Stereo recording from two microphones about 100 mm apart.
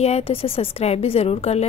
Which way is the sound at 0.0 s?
80° left.